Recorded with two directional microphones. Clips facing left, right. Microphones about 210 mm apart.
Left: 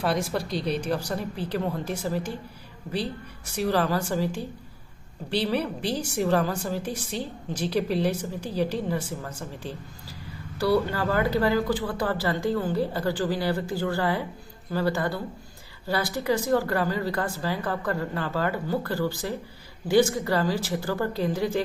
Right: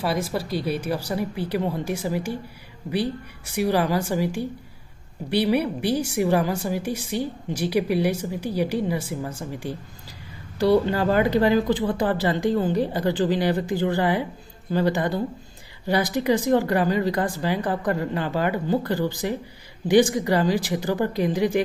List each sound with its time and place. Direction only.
0.0 s a woman's voice: centre (ahead or behind)
3.5 s a woman's voice: 15° right (ahead or behind)